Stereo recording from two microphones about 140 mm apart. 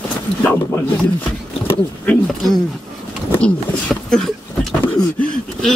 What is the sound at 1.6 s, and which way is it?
Speech, 15° left (ahead or behind).